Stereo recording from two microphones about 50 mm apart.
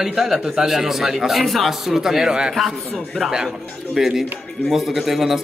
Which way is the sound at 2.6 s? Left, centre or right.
Centre.